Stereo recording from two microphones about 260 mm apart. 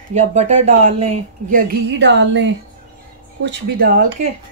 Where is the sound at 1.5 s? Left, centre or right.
Right.